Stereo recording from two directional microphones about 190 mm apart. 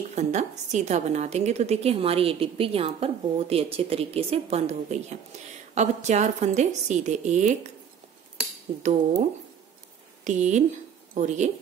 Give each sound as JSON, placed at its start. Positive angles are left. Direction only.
{"t": 0.1, "sound": "a woman's voice", "side_deg": -35}
{"t": 10.2, "sound": "a woman's voice", "side_deg": -40}